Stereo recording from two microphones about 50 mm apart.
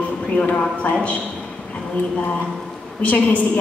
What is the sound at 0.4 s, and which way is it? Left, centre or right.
Speech, left.